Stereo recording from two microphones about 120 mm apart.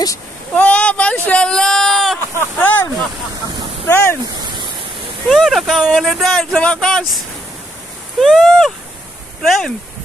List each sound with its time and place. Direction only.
0.5 s speech: 10° left (ahead or behind)
2.6 s speech: 15° left (ahead or behind)
4.3 s a sound: 40° right (ahead or behind)
5.3 s speech: centre (ahead or behind)